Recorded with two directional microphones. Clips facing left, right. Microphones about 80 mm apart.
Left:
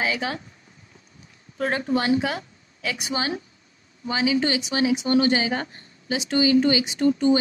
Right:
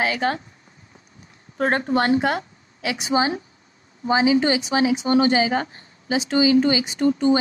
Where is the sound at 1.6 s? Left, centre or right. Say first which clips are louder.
Right 3 dB; right.